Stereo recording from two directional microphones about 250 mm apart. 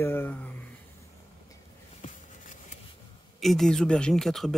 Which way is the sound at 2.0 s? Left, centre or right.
Left.